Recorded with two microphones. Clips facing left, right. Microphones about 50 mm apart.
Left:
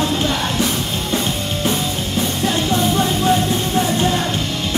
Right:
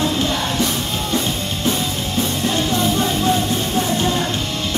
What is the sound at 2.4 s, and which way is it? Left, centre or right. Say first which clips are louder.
Music: left 2 dB; centre.